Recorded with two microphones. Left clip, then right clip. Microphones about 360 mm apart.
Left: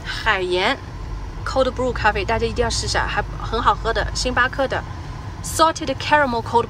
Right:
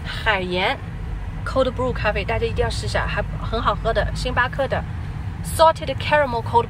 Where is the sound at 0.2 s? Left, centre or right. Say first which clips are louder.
Left 1 dB; centre.